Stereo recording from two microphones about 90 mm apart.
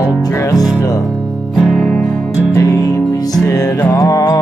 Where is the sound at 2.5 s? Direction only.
40° left (ahead or behind).